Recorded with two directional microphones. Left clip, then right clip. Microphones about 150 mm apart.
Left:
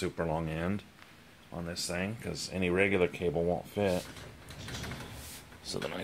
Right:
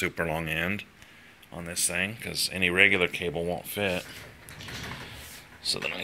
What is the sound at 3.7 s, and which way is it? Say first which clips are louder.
Speech: right 4 dB; 15° left (ahead or behind).